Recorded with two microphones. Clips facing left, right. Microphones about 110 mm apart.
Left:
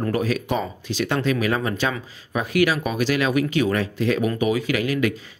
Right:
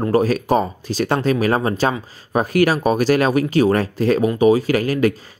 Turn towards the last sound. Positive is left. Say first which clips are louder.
# right 5 dB
turn(degrees=-40)  # may be behind; listen again after turning